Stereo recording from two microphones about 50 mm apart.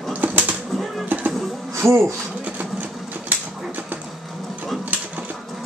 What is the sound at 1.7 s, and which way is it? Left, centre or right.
Music, right.